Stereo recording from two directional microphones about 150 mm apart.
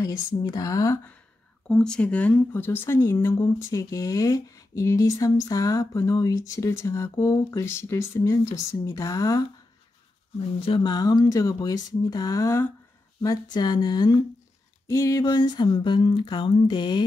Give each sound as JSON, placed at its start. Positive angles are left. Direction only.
{"t": 0.0, "sound": "speech", "side_deg": 25}
{"t": 1.7, "sound": "speech", "side_deg": 5}
{"t": 10.6, "sound": "speech", "side_deg": 35}
{"t": 14.9, "sound": "a sound", "side_deg": 20}